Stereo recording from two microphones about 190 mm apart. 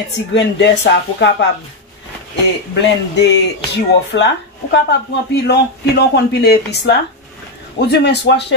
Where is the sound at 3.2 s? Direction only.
65° left (ahead or behind).